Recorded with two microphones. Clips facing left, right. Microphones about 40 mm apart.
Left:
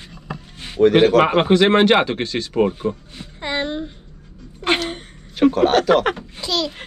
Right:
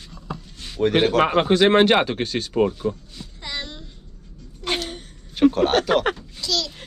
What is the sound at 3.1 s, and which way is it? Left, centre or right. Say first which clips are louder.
Music: left 8 dB; left.